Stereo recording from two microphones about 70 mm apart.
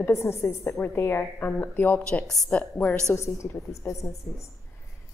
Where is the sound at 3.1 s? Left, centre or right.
Left.